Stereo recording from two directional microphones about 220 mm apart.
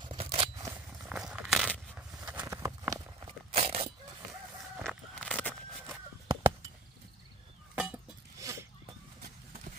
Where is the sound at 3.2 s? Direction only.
30° right (ahead or behind).